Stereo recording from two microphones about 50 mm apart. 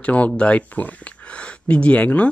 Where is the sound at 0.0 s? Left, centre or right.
Left.